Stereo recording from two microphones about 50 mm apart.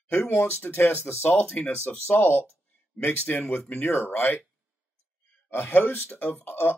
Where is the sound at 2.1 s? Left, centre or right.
Left.